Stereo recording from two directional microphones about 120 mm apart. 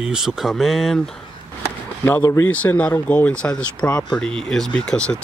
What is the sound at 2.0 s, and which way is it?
Speech, 20° left (ahead or behind).